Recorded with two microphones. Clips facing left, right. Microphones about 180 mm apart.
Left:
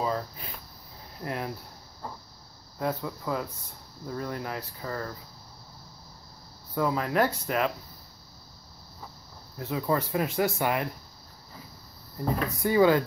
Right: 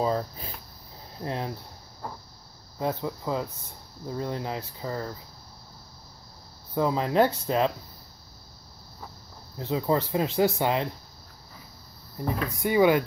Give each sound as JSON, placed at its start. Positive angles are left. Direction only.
{"t": 0.0, "sound": "a sound", "side_deg": -30}
{"t": 1.2, "sound": "speech", "side_deg": -25}
{"t": 2.8, "sound": "speech", "side_deg": -25}
{"t": 6.7, "sound": "speech", "side_deg": -25}
{"t": 9.6, "sound": "speech", "side_deg": -25}
{"t": 12.2, "sound": "speech", "side_deg": -20}